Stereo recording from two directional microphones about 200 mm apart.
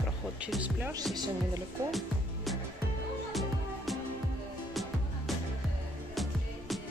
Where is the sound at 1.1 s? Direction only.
20° right (ahead or behind).